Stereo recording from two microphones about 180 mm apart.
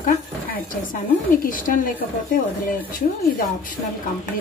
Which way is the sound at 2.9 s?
50° left (ahead or behind).